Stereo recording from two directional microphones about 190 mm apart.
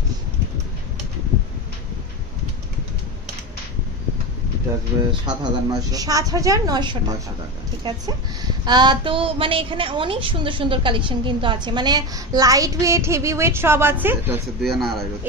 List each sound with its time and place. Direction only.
5.2 s a woman's voice: 20° right (ahead or behind)
8.6 s a woman's voice: 25° right (ahead or behind)
14.6 s a man's voice: centre (ahead or behind)